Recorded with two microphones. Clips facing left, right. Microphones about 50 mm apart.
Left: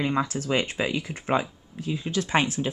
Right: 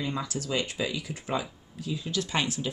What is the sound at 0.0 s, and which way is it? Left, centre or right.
Speech, left.